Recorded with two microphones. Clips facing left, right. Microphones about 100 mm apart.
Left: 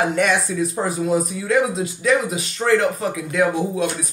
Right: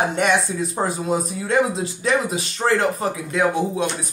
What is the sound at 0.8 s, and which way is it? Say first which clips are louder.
A man's voice: left 3 dB; 30° right (ahead or behind).